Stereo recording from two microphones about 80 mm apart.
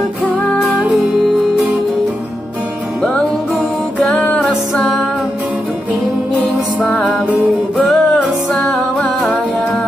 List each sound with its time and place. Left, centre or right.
4.0 s music: centre
7.7 s music: centre